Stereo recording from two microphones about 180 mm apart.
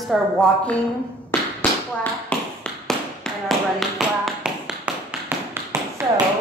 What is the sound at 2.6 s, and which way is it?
Tap, 5° left (ahead or behind).